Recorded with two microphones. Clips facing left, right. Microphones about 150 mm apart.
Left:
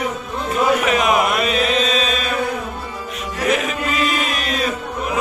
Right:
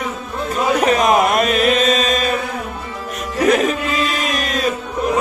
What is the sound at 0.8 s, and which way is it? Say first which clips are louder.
Chant: right 3 dB; 35° right (ahead or behind).